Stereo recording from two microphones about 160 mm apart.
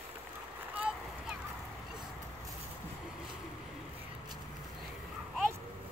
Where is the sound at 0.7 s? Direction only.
10° right (ahead or behind).